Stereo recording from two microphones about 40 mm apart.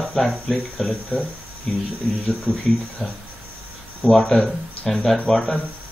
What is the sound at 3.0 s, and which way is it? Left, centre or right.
Speech, right.